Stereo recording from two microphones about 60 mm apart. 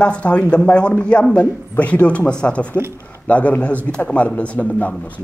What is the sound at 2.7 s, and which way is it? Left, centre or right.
Speech, right.